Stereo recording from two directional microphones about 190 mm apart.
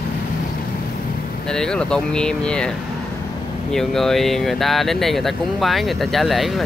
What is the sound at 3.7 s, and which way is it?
Speech, centre (ahead or behind).